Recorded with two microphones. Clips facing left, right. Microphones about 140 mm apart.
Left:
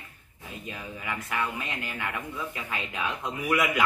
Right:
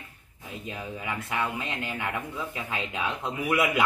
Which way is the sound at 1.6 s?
25° right (ahead or behind).